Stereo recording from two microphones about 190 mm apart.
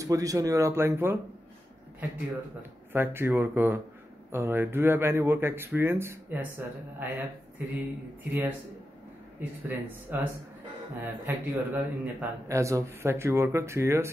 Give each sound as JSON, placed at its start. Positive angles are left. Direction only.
{"t": 0.0, "sound": "speech", "side_deg": -15}
{"t": 2.9, "sound": "speech", "side_deg": -10}